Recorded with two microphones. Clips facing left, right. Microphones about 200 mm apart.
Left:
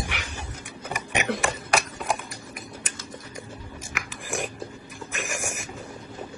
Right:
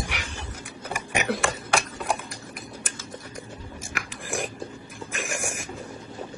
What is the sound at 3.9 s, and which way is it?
Biting, centre (ahead or behind).